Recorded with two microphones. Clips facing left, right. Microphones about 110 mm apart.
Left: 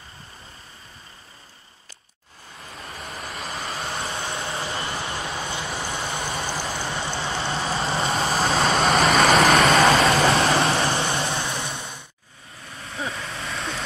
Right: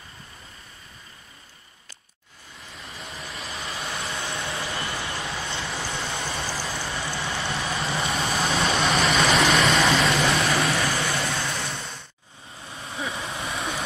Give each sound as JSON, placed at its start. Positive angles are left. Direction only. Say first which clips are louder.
{"t": 2.7, "sound": "vehicle", "louder": "left 3 dB", "side_deg": 35}
{"t": 9.5, "sound": "vehicle", "louder": "left 4 dB", "side_deg": 65}
{"t": 9.9, "sound": "vehicle", "louder": "left 4 dB", "side_deg": 35}
{"t": 12.5, "sound": "vehicle", "louder": "even", "side_deg": -30}
{"t": 13.5, "sound": "vehicle", "louder": "even", "side_deg": 0}